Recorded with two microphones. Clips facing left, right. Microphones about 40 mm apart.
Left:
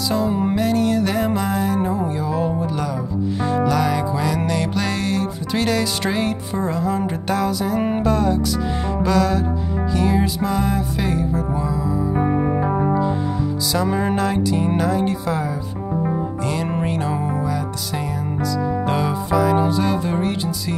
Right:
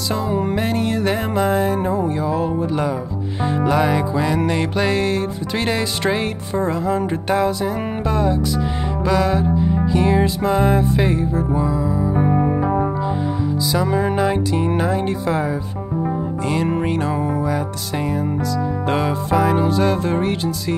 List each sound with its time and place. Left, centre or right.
0.1 s music: centre
0.4 s music: right
1.1 s music: centre
3.4 s music: right; by 14.1 s centre
14.1 s music: centre
18.9 s music: right